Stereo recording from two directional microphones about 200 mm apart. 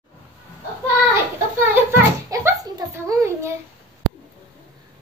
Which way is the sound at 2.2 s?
15° right (ahead or behind).